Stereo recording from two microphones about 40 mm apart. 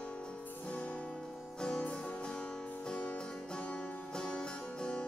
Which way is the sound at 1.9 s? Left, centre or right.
Left.